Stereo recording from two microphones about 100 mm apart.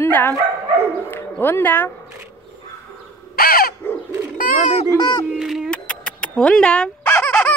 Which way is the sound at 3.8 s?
20° left (ahead or behind).